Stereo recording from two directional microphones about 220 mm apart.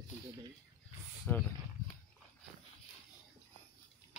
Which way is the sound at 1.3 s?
5° left (ahead or behind).